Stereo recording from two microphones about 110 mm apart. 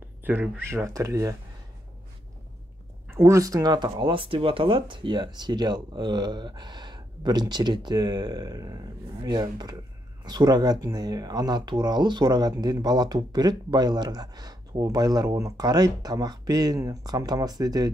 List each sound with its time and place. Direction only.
0.2 s speech: 15° right (ahead or behind)
3.2 s speech: 30° right (ahead or behind)